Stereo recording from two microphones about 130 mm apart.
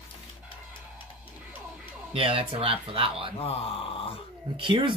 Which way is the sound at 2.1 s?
45° right (ahead or behind).